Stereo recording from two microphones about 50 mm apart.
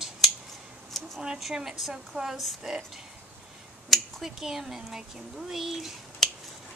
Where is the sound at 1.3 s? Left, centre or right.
Centre.